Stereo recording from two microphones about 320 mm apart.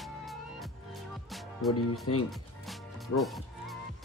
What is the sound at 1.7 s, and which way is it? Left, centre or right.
Speech, left.